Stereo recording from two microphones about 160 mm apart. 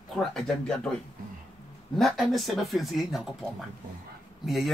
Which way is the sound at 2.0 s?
Centre (ahead or behind).